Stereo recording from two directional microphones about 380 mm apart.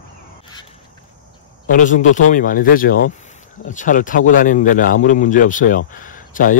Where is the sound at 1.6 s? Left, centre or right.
Centre.